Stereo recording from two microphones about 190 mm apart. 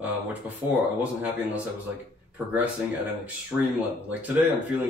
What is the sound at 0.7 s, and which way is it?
Speech, 10° right (ahead or behind).